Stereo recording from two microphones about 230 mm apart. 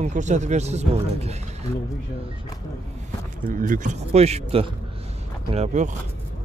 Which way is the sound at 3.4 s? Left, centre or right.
Right.